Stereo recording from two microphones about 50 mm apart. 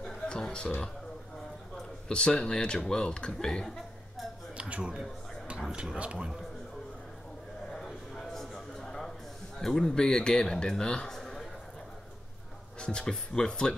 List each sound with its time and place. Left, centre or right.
0.3 s speech: centre
4.6 s speech: right
5.6 s speech: centre
7.7 s a sound: centre
9.6 s a man's voice: centre
11.1 s a sound: centre
12.8 s a man's voice: centre